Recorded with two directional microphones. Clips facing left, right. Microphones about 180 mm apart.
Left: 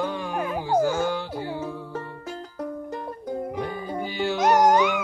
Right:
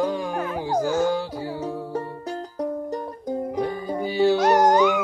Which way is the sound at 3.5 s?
35° right (ahead or behind).